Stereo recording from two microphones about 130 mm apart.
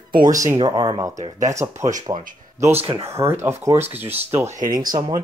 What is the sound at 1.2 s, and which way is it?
Speech, 65° right (ahead or behind).